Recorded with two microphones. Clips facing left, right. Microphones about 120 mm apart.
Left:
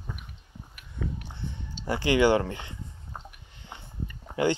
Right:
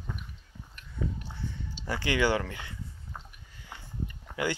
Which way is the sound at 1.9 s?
20° left (ahead or behind).